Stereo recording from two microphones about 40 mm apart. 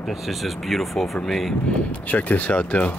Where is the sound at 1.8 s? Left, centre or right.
Left.